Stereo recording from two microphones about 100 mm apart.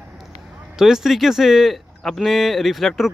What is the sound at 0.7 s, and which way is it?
Speech, 5° right (ahead or behind).